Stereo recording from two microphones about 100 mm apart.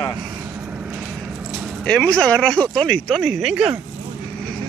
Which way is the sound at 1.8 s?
15° left (ahead or behind).